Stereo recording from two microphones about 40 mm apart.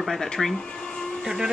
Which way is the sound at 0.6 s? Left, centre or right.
Centre.